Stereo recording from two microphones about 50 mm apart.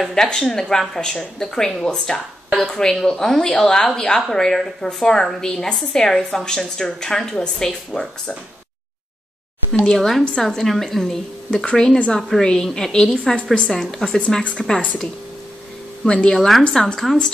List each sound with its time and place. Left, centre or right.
0.1 s speech: centre
9.7 s speech: centre
11.6 s speech: centre
12.2 s a woman's voice: centre
12.4 s speech: centre
16.1 s a woman's voice: left
16.3 s a woman's voice: centre